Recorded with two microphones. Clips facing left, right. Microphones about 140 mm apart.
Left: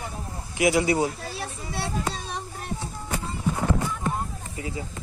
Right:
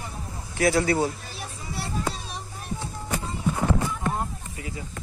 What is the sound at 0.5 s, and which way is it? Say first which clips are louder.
Speech: even; 15° left (ahead or behind).